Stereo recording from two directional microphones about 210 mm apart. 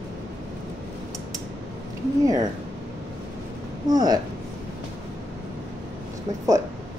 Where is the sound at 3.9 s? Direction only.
20° right (ahead or behind).